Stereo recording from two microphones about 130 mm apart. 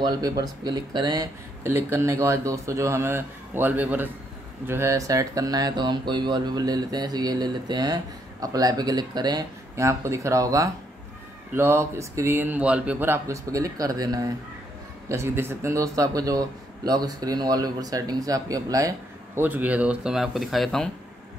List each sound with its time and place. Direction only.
0.2 s speech: 30° right (ahead or behind)
1.7 s speech: 20° right (ahead or behind)
19.4 s speech: 10° right (ahead or behind)